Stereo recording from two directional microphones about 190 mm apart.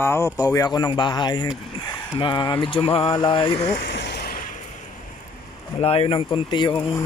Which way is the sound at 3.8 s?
65° left (ahead or behind).